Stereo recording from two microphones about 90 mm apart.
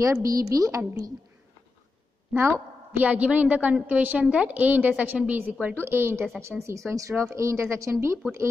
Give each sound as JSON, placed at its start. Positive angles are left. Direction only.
{"t": 0.0, "sound": "speech", "side_deg": -40}
{"t": 2.3, "sound": "speech", "side_deg": -30}
{"t": 3.0, "sound": "a woman's voice", "side_deg": -15}